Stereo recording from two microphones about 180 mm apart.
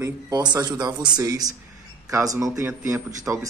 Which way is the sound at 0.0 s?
25° right (ahead or behind).